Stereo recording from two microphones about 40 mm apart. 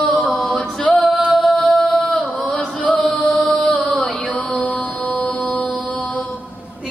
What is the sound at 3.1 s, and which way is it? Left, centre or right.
Chant, left.